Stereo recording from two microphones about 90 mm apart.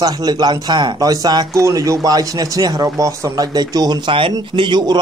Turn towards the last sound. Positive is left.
turn(degrees=-55)  # may be behind; listen again after turning